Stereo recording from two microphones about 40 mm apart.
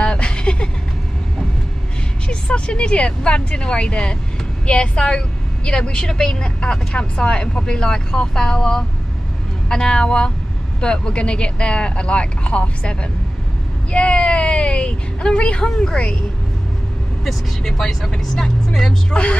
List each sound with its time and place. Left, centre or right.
0.0 s a sound: left
2.2 s speech: left
17.2 s speech: centre